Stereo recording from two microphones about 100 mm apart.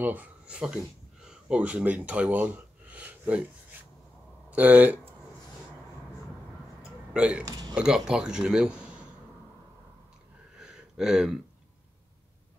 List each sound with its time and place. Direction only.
0.0 s speech: 15° right (ahead or behind)
4.5 s speech: 15° right (ahead or behind)
6.8 s hiccup: 10° right (ahead or behind)
7.4 s speech: 40° right (ahead or behind)
7.7 s speech: 10° right (ahead or behind)
10.6 s a sound: 5° right (ahead or behind)